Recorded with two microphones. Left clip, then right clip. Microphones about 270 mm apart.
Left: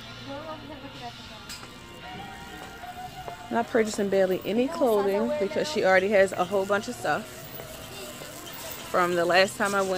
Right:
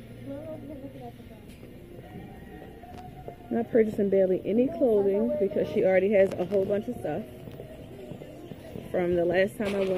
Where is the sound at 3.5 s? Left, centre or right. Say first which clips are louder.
Even; left.